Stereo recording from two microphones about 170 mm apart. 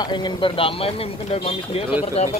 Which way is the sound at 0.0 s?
25° left (ahead or behind).